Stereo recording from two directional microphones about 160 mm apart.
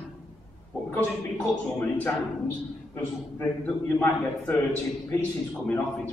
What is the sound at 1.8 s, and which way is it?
A man's voice, 10° left (ahead or behind).